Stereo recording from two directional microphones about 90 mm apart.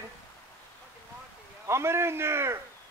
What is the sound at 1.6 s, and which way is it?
Speech, 30° right (ahead or behind).